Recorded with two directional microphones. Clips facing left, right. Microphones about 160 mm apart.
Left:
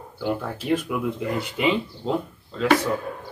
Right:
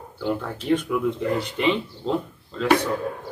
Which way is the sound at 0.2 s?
10° left (ahead or behind).